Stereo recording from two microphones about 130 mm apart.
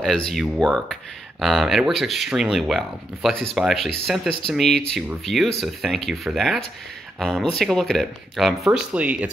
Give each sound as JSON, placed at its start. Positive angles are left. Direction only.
{"t": 0.0, "sound": "speech", "side_deg": 0}
{"t": 8.9, "sound": "speech", "side_deg": -10}